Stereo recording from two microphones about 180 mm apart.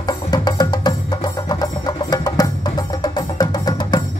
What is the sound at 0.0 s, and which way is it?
Music, 25° left (ahead or behind).